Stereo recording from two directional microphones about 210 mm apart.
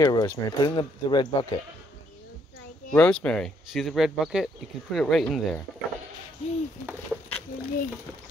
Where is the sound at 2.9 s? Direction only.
5° left (ahead or behind).